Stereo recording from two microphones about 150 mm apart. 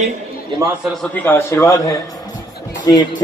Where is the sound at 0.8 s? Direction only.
Centre (ahead or behind).